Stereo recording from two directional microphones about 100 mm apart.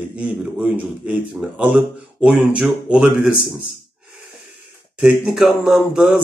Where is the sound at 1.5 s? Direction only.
10° right (ahead or behind).